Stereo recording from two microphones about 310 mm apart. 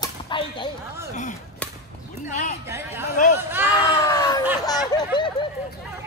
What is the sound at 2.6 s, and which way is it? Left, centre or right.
Speech, centre.